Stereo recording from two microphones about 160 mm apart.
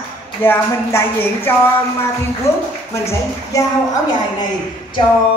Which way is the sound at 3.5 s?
20° left (ahead or behind).